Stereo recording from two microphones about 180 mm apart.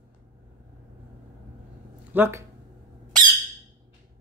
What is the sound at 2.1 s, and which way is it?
Speech, 15° right (ahead or behind).